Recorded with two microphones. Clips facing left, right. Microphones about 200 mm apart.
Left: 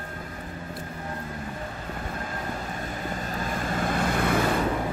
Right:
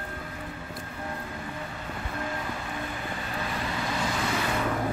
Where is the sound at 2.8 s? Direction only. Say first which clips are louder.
Left 2 dB; 40° left (ahead or behind).